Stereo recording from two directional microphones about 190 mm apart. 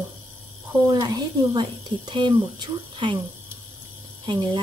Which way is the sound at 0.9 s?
20° right (ahead or behind).